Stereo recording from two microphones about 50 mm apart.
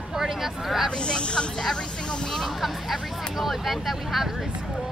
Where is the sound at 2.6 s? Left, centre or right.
Centre.